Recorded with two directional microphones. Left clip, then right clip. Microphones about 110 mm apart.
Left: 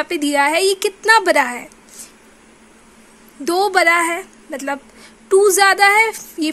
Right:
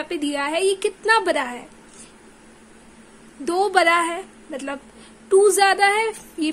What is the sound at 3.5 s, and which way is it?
A woman's voice, 25° left (ahead or behind).